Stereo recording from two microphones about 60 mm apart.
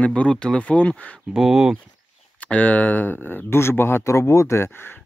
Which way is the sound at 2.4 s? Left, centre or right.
Left.